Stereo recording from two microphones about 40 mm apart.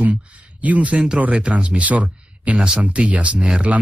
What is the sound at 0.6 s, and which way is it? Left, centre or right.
Speech, right.